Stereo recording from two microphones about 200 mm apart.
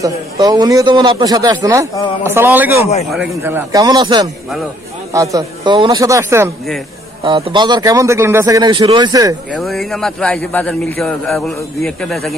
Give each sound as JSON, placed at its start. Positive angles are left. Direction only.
{"t": 0.0, "sound": "a man's voice", "side_deg": -20}
{"t": 7.2, "sound": "a man's voice", "side_deg": -25}
{"t": 9.5, "sound": "a man's voice", "side_deg": 0}